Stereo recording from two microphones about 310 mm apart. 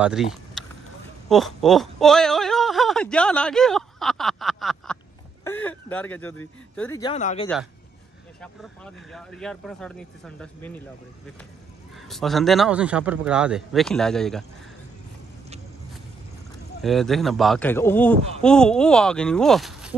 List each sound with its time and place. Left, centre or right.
0.0 s speech: centre
5.4 s a sound: centre
6.8 s speech: centre
8.4 s speech: centre
12.1 s speech: centre
16.8 s speech: centre